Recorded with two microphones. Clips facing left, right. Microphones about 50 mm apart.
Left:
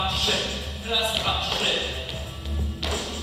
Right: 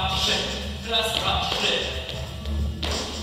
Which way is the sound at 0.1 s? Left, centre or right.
Centre.